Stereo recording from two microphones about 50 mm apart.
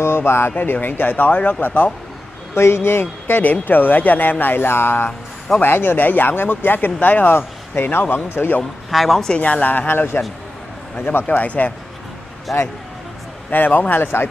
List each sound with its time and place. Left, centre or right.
0.0 s speech: left
0.5 s speech: left
2.5 s speech: left
7.3 s speech: left
8.9 s a woman's voice: centre
9.4 s speech: left
12.5 s a woman's voice: centre
13.5 s speech: left